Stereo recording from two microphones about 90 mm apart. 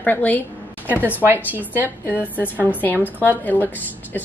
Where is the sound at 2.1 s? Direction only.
20° left (ahead or behind).